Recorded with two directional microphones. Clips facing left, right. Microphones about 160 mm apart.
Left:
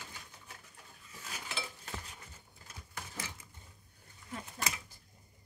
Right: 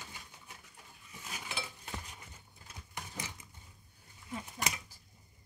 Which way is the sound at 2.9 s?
15° right (ahead or behind).